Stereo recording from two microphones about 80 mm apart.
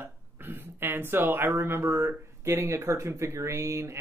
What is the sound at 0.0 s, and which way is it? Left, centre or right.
Speech, right.